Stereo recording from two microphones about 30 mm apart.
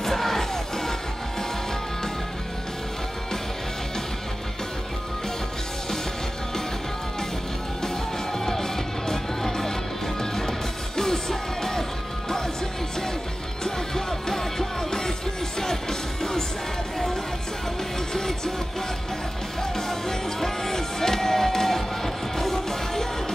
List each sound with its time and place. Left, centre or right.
0.0 s music: centre
8.5 s music: centre
11.0 s music: centre
13.7 s music: centre
18.1 s music: centre
19.9 s music: centre